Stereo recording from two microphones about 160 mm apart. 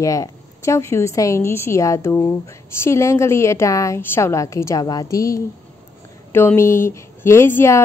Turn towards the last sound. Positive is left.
turn(degrees=15)  # may be behind; listen again after turning